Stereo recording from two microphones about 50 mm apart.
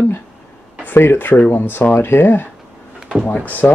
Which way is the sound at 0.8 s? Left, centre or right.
Left.